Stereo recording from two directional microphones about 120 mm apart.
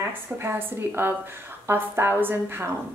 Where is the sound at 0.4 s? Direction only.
20° right (ahead or behind).